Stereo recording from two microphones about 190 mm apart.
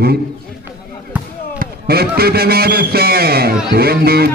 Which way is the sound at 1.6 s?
55° right (ahead or behind).